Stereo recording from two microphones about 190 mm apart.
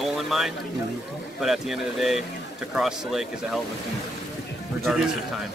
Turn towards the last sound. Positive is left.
turn(degrees=-5)  # may be behind; listen again after turning